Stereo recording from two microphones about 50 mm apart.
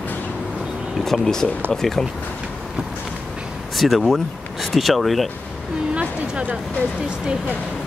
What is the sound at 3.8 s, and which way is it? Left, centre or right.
Speech, centre.